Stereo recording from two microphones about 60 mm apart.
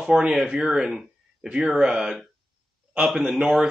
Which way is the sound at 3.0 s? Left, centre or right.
Centre.